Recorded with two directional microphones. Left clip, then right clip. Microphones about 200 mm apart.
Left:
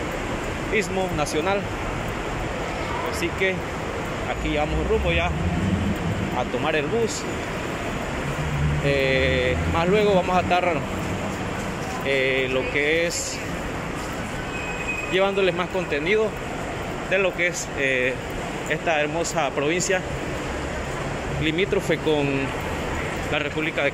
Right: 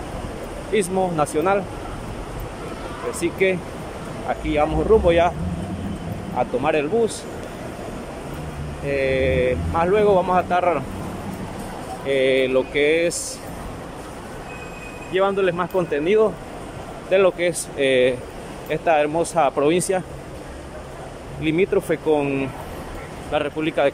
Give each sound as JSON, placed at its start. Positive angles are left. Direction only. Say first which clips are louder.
{"t": 0.7, "sound": "speech", "louder": "right 5 dB", "side_deg": -15}
{"t": 3.1, "sound": "speech", "louder": "right 5 dB", "side_deg": -15}
{"t": 5.0, "sound": "speech", "louder": "right 7 dB", "side_deg": -25}
{"t": 6.6, "sound": "speech", "louder": "right 3 dB", "side_deg": -15}
{"t": 8.8, "sound": "speech", "louder": "right 1 dB", "side_deg": -5}
{"t": 12.1, "sound": "speech", "louder": "right 4 dB", "side_deg": -15}
{"t": 15.1, "sound": "speech", "louder": "right 2 dB", "side_deg": 0}
{"t": 21.5, "sound": "speech", "louder": "right 3 dB", "side_deg": -10}